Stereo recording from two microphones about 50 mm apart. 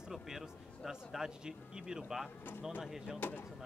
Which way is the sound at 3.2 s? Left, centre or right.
Left.